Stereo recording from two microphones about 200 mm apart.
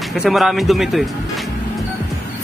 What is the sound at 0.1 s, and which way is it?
Speech, centre (ahead or behind).